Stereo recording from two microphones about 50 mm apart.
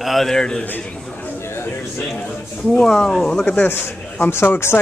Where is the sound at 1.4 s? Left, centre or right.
Left.